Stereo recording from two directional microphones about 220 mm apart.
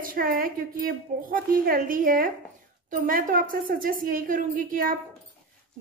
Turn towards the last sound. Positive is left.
turn(degrees=-40)  # may be behind; listen again after turning